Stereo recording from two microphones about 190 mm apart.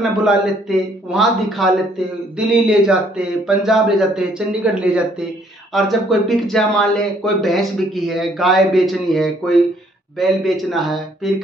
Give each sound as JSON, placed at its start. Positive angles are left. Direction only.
{"t": 0.0, "sound": "speech", "side_deg": 0}